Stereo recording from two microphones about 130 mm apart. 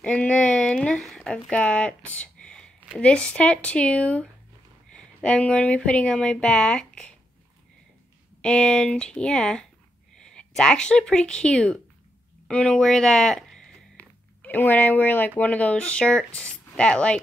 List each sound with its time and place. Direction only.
0.0 s speech: 10° left (ahead or behind)
8.4 s speech: 5° left (ahead or behind)